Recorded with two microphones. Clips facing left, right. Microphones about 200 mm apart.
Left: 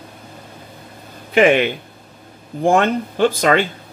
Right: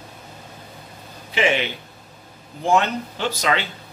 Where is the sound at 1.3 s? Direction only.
55° left (ahead or behind).